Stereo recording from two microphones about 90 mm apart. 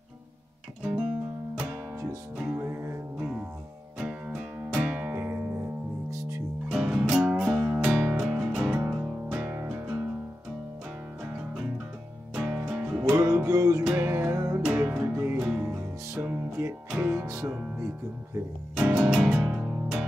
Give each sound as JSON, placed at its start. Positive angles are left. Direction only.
{"t": 0.8, "sound": "music", "side_deg": -10}
{"t": 2.3, "sound": "music", "side_deg": -15}
{"t": 2.6, "sound": "music", "side_deg": -25}
{"t": 4.0, "sound": "music", "side_deg": -10}
{"t": 5.1, "sound": "music", "side_deg": -25}
{"t": 6.7, "sound": "music", "side_deg": -10}
{"t": 12.6, "sound": "music", "side_deg": -15}
{"t": 13.2, "sound": "music", "side_deg": -35}
{"t": 13.8, "sound": "music", "side_deg": -25}
{"t": 14.6, "sound": "music", "side_deg": -20}
{"t": 15.3, "sound": "music", "side_deg": -10}
{"t": 15.6, "sound": "music", "side_deg": -25}